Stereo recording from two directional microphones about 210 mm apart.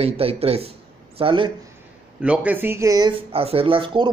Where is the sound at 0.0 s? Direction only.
30° right (ahead or behind).